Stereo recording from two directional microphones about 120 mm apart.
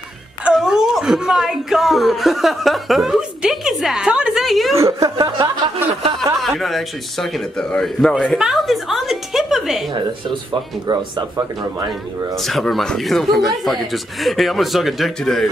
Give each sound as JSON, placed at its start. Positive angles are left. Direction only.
{"t": 0.4, "sound": "speech", "side_deg": -5}
{"t": 4.7, "sound": "speech", "side_deg": -25}
{"t": 6.4, "sound": "a man's voice", "side_deg": 0}
{"t": 10.9, "sound": "speech", "side_deg": -35}
{"t": 12.4, "sound": "a man's voice", "side_deg": 0}